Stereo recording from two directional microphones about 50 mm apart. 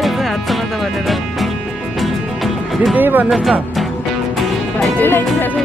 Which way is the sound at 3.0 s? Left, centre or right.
Right.